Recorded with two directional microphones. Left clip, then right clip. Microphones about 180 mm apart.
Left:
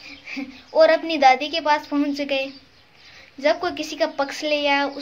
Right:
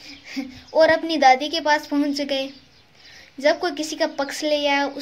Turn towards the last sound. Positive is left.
turn(degrees=-30)  # may be behind; listen again after turning